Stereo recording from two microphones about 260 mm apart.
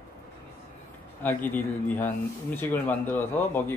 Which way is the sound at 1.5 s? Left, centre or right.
Centre.